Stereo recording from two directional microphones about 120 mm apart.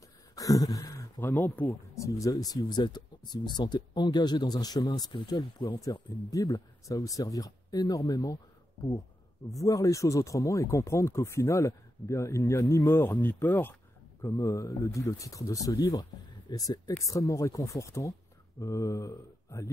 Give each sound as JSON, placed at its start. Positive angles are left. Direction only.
{"t": 0.4, "sound": "a sound", "side_deg": 30}
{"t": 1.2, "sound": "speech", "side_deg": 15}
{"t": 2.0, "sound": "speech", "side_deg": 25}
{"t": 9.5, "sound": "speech", "side_deg": 30}